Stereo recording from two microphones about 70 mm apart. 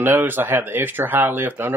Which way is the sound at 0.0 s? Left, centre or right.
Right.